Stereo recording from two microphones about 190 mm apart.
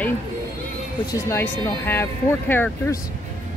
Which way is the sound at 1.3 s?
15° left (ahead or behind).